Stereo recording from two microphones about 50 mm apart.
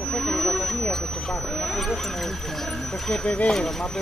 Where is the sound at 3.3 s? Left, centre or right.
Left.